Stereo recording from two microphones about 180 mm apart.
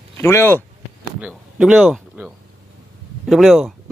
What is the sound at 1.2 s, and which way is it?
A man's voice, 5° right (ahead or behind).